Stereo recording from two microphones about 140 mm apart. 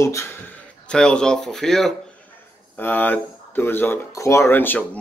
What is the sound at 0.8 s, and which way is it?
Speech, 5° left (ahead or behind).